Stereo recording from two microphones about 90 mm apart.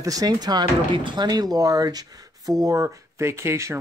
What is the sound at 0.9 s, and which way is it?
Speech, 60° right (ahead or behind).